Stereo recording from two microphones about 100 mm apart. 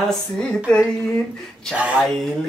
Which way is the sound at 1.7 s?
15° right (ahead or behind).